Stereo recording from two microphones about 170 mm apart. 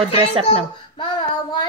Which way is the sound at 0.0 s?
30° right (ahead or behind).